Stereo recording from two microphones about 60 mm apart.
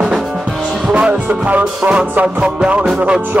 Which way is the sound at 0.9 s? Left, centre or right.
Right.